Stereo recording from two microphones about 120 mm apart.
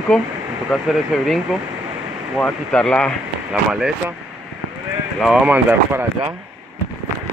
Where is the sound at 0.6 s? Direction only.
Centre (ahead or behind).